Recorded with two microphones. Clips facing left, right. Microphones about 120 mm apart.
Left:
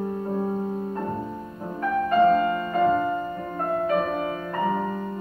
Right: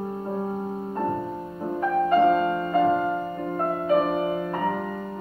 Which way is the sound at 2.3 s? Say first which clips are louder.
Even; 15° right (ahead or behind).